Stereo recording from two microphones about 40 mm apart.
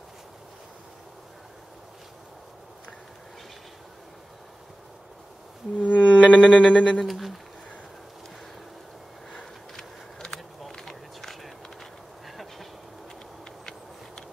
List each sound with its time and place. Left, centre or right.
5.8 s music: left
6.5 s speech: left
7.1 s speech: centre
9.3 s a sound: centre
10.7 s run: centre
12.3 s train: centre